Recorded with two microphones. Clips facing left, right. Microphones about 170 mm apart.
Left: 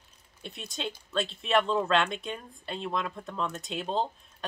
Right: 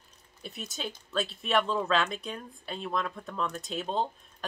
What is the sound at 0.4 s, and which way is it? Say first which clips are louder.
Speech: left 1 dB; 5° right (ahead or behind).